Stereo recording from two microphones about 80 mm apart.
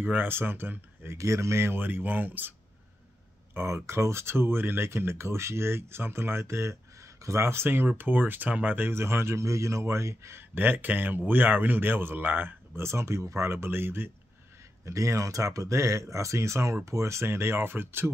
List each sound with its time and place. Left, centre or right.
0.0 s speech: right
1.1 s speech: right
3.5 s speech: right
14.9 s speech: right